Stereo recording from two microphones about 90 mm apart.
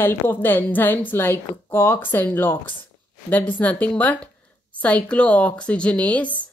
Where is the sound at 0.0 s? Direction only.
25° left (ahead or behind).